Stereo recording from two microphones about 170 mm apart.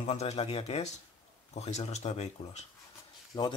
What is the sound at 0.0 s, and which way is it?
Speech, 40° left (ahead or behind).